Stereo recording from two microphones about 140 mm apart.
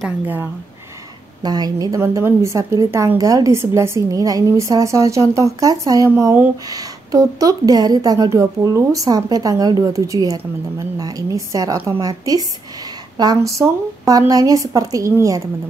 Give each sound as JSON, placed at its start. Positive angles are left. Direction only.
{"t": 1.4, "sound": "a woman's voice", "side_deg": -30}